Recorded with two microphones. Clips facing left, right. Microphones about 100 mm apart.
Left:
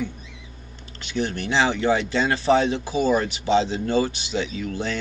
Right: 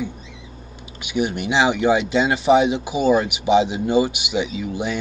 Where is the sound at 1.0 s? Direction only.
15° right (ahead or behind).